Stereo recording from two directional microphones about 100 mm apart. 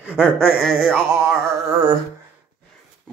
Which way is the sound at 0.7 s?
5° left (ahead or behind).